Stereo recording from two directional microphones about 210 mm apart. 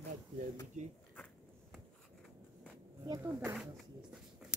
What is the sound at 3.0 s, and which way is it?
Speech, 15° right (ahead or behind).